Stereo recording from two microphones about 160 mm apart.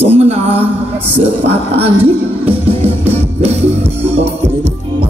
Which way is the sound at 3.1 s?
40° right (ahead or behind).